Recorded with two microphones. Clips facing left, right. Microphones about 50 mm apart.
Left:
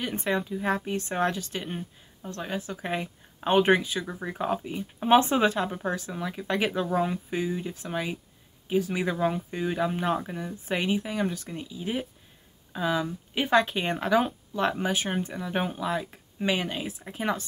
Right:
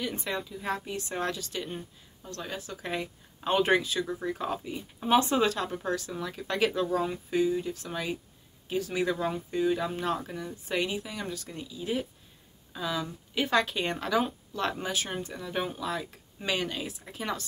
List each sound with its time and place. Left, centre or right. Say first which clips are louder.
0.0 s speech: left 5 dB; left